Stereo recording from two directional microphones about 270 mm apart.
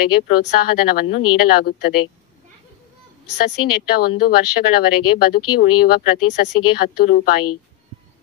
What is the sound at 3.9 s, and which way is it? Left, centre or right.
Speech, left.